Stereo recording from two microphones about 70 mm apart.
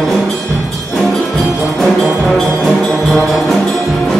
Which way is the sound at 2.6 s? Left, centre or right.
Centre.